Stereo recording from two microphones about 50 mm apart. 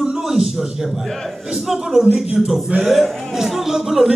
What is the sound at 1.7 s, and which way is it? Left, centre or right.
Speech, centre.